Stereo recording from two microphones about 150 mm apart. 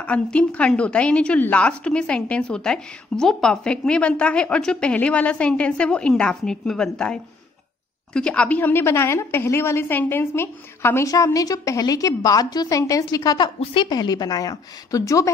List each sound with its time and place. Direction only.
0.0 s a woman's voice: 10° left (ahead or behind)